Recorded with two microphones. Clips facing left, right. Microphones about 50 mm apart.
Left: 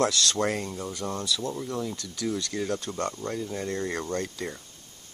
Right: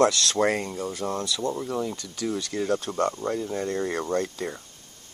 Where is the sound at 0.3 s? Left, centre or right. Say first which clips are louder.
Right 4 dB; centre.